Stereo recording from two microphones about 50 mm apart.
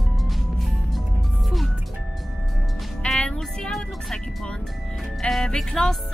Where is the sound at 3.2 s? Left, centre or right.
Centre.